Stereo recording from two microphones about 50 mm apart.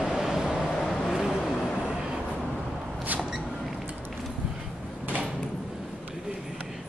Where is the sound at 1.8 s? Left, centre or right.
Centre.